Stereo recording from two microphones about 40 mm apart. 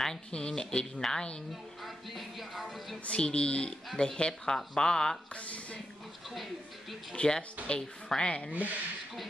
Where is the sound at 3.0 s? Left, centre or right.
Left.